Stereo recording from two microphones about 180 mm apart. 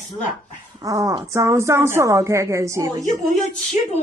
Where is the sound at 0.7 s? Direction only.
20° right (ahead or behind).